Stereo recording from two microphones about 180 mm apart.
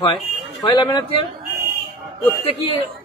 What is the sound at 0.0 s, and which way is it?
Speech, 20° left (ahead or behind).